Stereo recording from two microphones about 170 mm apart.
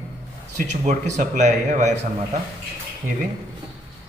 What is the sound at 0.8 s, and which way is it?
Speech, 45° right (ahead or behind).